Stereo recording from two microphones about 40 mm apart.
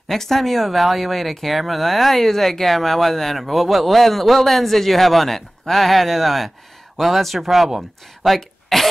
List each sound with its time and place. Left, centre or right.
0.1 s speech: centre
8.7 s cough: centre